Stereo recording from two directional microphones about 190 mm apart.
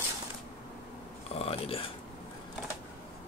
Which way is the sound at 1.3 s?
30° left (ahead or behind).